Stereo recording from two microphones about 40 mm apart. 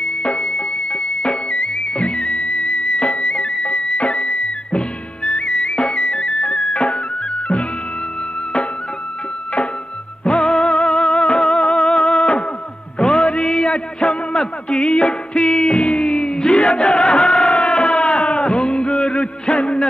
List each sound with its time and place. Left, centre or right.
0.0 s music: left
10.2 s music: centre